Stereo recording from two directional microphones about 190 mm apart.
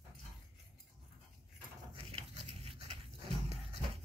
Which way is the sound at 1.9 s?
35° right (ahead or behind).